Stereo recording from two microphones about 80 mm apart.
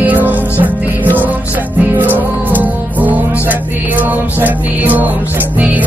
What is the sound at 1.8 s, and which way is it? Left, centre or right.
Music, right.